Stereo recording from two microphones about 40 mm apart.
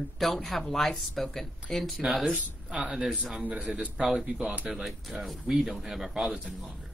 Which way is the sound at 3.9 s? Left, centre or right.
Centre.